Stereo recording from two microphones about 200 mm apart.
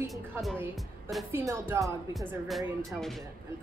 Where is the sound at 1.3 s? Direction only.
15° right (ahead or behind).